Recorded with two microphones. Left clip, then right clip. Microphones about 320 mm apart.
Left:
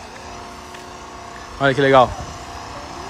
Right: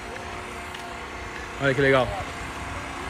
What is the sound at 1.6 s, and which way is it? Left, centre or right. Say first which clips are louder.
Speech: left 7 dB; centre.